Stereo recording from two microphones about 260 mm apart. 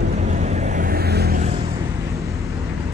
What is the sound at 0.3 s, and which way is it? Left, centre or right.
Vehicle, right.